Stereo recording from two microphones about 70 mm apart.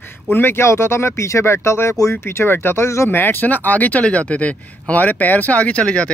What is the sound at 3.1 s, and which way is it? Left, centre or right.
Speech, left.